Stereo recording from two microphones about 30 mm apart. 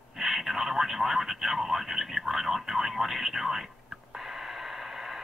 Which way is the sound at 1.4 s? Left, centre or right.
Centre.